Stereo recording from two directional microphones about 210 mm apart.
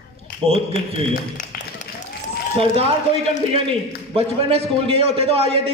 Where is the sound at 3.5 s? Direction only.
25° right (ahead or behind).